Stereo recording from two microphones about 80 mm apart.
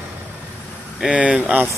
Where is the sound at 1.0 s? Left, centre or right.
Centre.